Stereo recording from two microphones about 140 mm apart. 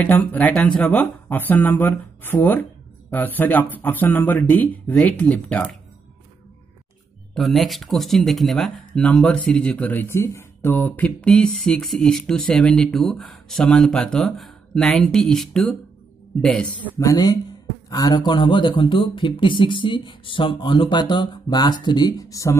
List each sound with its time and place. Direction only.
0.0 s speech: 10° left (ahead or behind)
7.3 s speech: centre (ahead or behind)
16.9 s speech: 25° left (ahead or behind)